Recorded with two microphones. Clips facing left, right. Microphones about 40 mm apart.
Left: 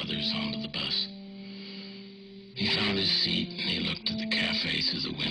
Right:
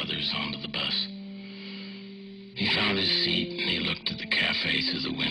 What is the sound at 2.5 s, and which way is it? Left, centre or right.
Music, centre.